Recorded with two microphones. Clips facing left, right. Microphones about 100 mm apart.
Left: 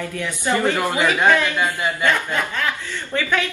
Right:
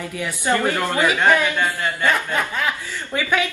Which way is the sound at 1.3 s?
10° right (ahead or behind).